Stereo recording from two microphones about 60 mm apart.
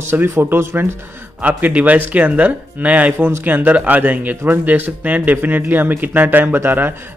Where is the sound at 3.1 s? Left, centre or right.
Right.